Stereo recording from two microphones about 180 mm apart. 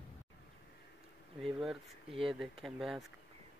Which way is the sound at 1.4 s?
Centre (ahead or behind).